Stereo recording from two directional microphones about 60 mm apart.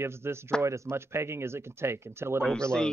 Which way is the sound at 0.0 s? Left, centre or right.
Right.